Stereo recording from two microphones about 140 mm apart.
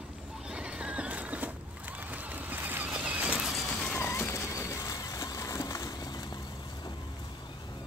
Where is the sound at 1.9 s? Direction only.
10° right (ahead or behind).